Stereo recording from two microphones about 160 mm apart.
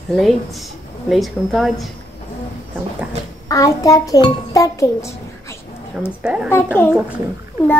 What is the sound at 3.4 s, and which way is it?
A child's voice, 20° left (ahead or behind).